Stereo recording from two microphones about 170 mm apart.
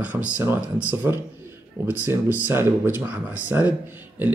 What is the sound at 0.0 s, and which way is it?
Speech, 10° right (ahead or behind).